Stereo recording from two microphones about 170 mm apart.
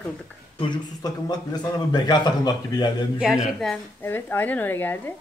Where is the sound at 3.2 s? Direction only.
5° right (ahead or behind).